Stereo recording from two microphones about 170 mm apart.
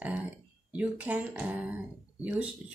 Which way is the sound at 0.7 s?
10° right (ahead or behind).